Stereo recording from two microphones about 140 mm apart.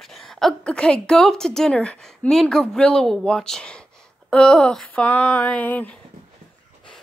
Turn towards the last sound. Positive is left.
turn(degrees=10)  # may be behind; listen again after turning